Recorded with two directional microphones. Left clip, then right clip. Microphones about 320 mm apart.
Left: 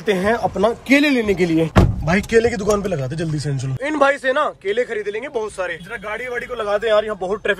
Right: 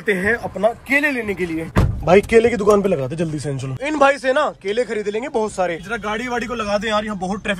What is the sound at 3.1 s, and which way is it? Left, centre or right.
Speech, centre.